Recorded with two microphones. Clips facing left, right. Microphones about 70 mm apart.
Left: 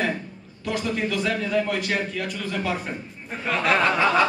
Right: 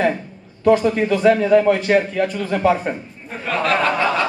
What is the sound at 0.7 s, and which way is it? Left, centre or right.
A man's voice, right.